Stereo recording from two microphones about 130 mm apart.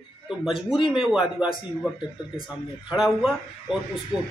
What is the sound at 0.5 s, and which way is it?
Speech, 40° left (ahead or behind).